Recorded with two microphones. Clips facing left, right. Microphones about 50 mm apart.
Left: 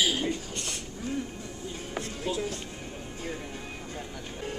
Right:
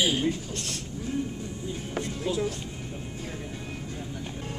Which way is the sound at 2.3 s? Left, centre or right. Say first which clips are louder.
Right 2 dB; centre.